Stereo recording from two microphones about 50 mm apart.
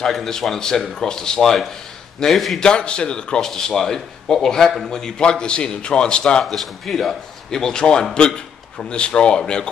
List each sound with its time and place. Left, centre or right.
0.0 s a man's voice: centre
2.6 s a man's voice: centre
6.4 s a man's voice: centre